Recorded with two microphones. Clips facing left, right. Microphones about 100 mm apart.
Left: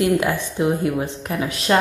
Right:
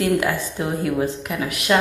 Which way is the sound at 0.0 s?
20° left (ahead or behind).